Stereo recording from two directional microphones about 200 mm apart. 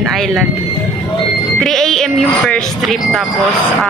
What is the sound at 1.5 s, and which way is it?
Speech, centre (ahead or behind).